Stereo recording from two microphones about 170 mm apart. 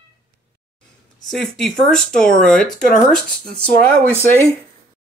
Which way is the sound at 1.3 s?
5° left (ahead or behind).